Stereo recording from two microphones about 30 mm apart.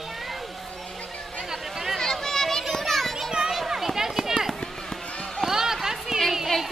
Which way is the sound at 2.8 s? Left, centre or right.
Centre.